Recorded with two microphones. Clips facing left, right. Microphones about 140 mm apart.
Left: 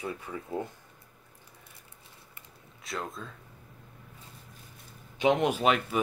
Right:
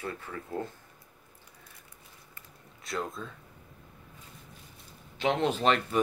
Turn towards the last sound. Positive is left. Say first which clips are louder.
# even
turn(degrees=5)  # may be behind; listen again after turning